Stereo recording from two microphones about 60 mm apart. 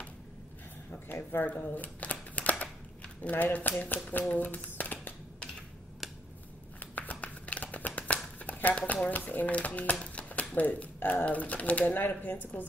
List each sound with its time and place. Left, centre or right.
1.0 s speech: left
1.8 s a sound: left
3.3 s speech: left
7.0 s a sound: left
9.1 s speech: left
10.0 s a sound: left
10.5 s speech: left
11.0 s speech: left
11.2 s speech: left